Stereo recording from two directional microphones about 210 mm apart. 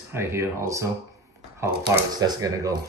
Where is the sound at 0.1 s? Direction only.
15° right (ahead or behind).